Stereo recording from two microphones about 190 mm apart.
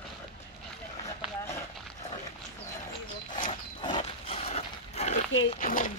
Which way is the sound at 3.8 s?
25° left (ahead or behind).